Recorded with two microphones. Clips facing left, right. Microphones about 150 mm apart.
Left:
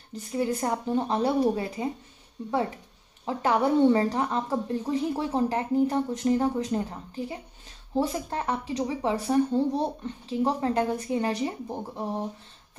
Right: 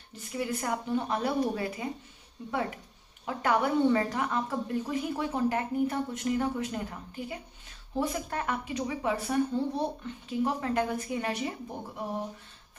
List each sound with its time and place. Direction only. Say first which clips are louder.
0.1 s speech: left 5 dB; 35° left (ahead or behind)
3.3 s a woman's voice: left 3 dB; 30° left (ahead or behind)